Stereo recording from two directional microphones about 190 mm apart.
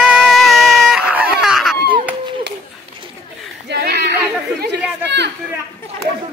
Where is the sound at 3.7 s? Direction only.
60° right (ahead or behind).